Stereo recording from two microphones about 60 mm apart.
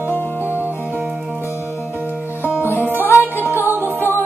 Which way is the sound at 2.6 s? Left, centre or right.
Left.